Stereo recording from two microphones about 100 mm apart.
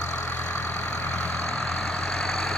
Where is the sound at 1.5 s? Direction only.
5° left (ahead or behind).